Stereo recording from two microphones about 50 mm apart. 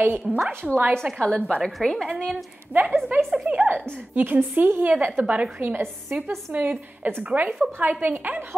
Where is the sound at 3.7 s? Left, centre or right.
Right.